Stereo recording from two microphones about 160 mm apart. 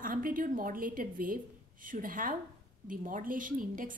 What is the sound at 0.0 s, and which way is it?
A woman's voice, 60° right (ahead or behind).